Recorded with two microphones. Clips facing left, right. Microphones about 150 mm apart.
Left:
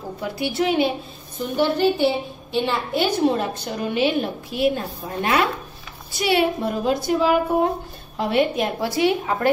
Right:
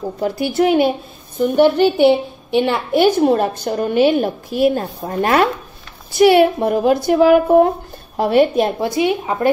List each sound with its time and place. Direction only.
0.2 s a woman's voice: 45° right (ahead or behind)
1.4 s a woman's voice: 60° right (ahead or behind)
8.2 s a woman's voice: 40° right (ahead or behind)
8.8 s a woman's voice: 20° right (ahead or behind)